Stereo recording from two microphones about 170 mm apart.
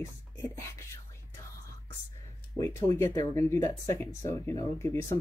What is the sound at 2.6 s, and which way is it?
Speech, 20° left (ahead or behind).